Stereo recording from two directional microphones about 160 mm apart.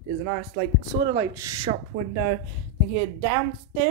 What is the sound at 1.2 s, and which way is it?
Speech, 20° right (ahead or behind).